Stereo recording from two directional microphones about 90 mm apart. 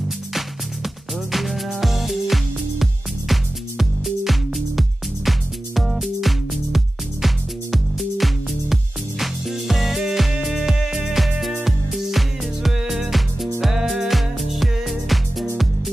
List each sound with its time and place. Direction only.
0.3 s music: centre (ahead or behind)